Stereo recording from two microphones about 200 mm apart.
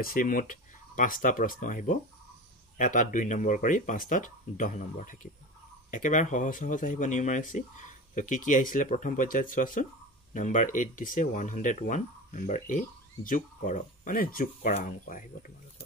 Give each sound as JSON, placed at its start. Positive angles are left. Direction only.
{"t": 0.0, "sound": "speech", "side_deg": 45}